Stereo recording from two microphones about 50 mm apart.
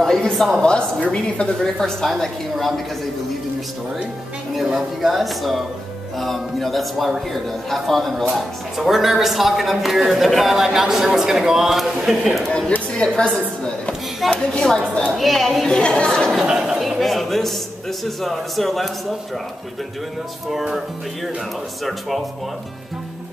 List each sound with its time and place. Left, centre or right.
0.0 s speech: centre
0.6 s a woman's voice: centre
4.6 s a man's voice: centre
12.9 s a woman's voice: centre
14.2 s speech: centre
15.7 s a woman's voice: centre
16.3 s a man's voice: centre
17.0 s a man's voice: centre
20.5 s a man's voice: centre